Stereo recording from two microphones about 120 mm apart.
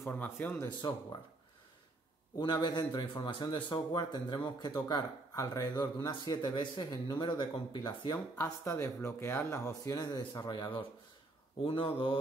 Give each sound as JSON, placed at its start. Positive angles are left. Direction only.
{"t": 0.0, "sound": "speech", "side_deg": 10}
{"t": 0.8, "sound": "speech", "side_deg": 40}
{"t": 2.3, "sound": "speech", "side_deg": 35}